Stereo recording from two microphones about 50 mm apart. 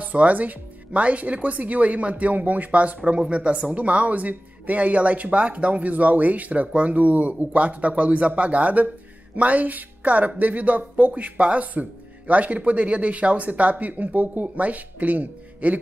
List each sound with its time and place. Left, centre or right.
0.0 s speech: right